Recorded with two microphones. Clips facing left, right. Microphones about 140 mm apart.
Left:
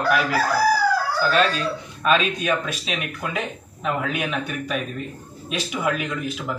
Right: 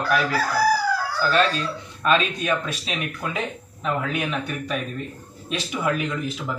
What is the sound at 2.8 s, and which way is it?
Speech, 30° right (ahead or behind).